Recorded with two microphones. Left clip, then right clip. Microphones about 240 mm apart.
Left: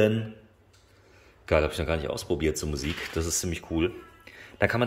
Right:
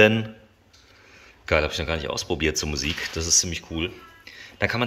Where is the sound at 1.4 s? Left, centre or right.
Centre.